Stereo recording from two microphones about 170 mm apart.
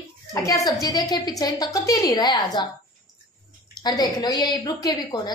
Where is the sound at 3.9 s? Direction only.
20° left (ahead or behind).